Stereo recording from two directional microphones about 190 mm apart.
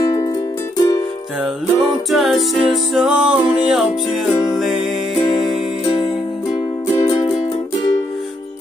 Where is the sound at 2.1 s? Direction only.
Centre (ahead or behind).